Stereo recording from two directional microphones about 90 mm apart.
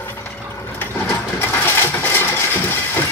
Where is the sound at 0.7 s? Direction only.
25° left (ahead or behind).